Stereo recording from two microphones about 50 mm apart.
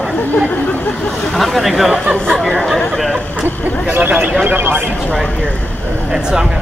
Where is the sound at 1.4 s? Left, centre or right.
Centre.